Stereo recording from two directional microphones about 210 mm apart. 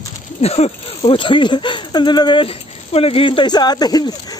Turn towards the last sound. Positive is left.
turn(degrees=20)  # may be behind; listen again after turning